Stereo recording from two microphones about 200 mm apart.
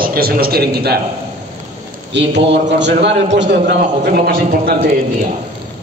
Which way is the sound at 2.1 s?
60° right (ahead or behind).